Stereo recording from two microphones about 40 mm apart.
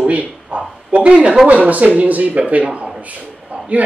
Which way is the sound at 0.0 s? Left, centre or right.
Right.